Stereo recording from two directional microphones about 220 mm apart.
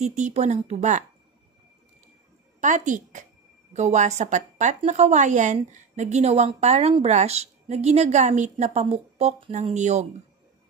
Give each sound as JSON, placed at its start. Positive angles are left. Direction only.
{"t": 0.0, "sound": "a woman's voice", "side_deg": -30}
{"t": 2.6, "sound": "a woman's voice", "side_deg": -35}